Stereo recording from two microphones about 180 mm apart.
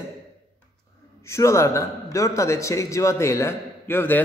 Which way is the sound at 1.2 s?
15° left (ahead or behind).